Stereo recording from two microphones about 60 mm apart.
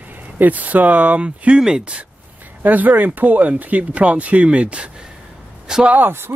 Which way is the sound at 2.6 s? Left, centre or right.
Right.